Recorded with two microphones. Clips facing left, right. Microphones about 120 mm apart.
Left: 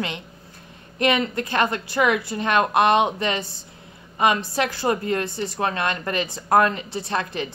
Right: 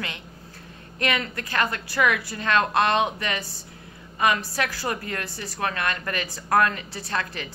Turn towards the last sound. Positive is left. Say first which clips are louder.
# left 4 dB
turn(degrees=20)  # may be behind; listen again after turning